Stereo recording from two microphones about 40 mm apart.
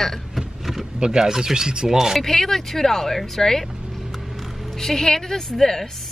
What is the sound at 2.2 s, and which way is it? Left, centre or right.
Speech, centre.